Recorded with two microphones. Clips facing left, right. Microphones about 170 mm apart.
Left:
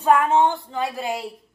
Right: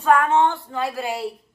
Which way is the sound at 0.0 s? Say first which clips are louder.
Even; 20° left (ahead or behind).